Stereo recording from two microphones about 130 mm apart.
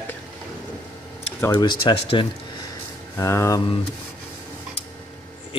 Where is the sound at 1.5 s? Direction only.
35° left (ahead or behind).